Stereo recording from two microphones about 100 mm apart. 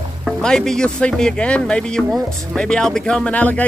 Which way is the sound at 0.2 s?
5° left (ahead or behind).